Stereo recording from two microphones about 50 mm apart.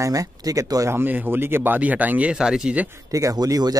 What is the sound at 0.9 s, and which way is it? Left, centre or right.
Speech, right.